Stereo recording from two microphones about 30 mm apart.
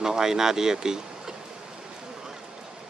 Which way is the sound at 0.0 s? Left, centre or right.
Centre.